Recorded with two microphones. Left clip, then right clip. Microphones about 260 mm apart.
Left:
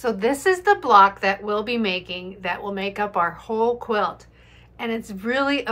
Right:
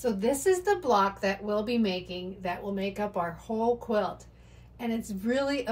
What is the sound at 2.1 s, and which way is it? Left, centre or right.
Speech, centre.